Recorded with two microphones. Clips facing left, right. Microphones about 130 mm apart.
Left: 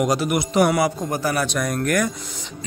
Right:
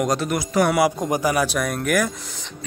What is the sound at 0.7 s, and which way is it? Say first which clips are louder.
A man's voice: right 2 dB; 10° right (ahead or behind).